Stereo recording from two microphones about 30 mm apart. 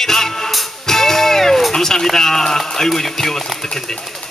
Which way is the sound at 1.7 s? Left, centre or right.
Centre.